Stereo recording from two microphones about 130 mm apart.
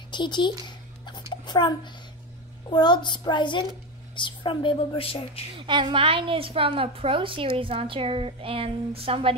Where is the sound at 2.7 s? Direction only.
35° left (ahead or behind).